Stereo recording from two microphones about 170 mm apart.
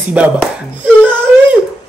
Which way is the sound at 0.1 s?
10° right (ahead or behind).